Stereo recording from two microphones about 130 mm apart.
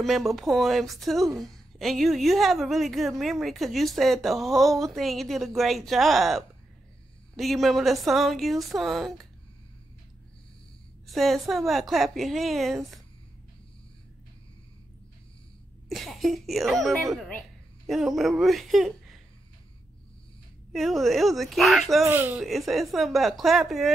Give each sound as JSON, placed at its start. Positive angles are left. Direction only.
{"t": 0.0, "sound": "a woman's voice", "side_deg": 0}
{"t": 11.1, "sound": "a woman's voice", "side_deg": 0}
{"t": 15.9, "sound": "a woman's voice", "side_deg": 0}
{"t": 20.7, "sound": "a woman's voice", "side_deg": 0}
{"t": 22.0, "sound": "speech", "side_deg": -15}
{"t": 22.4, "sound": "a woman's voice", "side_deg": 0}